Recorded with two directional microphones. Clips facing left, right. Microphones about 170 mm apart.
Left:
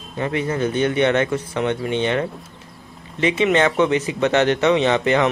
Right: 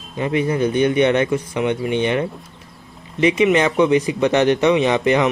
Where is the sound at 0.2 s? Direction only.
15° right (ahead or behind).